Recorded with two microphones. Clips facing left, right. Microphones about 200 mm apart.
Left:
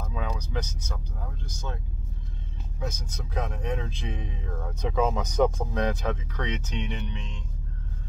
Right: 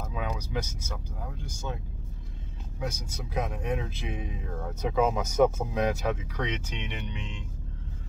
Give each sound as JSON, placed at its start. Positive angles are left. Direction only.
{"t": 0.0, "sound": "speech", "side_deg": -10}
{"t": 2.8, "sound": "speech", "side_deg": -10}